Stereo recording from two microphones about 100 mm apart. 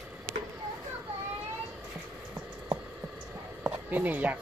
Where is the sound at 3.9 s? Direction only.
15° right (ahead or behind).